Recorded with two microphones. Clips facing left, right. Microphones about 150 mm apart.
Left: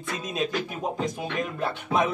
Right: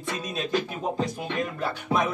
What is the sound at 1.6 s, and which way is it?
Music, 25° left (ahead or behind).